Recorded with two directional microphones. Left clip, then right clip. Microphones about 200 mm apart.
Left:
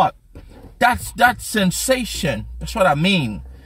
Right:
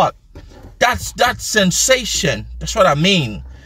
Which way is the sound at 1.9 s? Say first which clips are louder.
Right 5 dB; 10° left (ahead or behind).